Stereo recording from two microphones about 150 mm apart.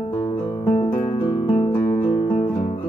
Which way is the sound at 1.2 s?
30° left (ahead or behind).